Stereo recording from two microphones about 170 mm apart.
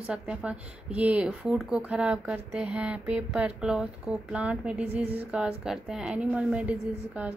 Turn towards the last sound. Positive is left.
turn(degrees=-10)  # may be behind; listen again after turning